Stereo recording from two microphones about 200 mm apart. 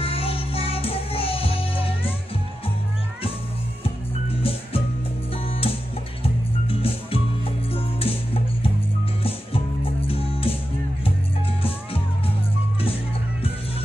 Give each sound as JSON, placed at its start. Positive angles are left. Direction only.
{"t": 0.0, "sound": "music", "side_deg": 30}
{"t": 3.8, "sound": "music", "side_deg": 30}
{"t": 9.2, "sound": "music", "side_deg": 30}